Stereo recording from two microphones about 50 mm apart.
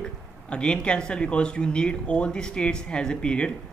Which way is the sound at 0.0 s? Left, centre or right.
Left.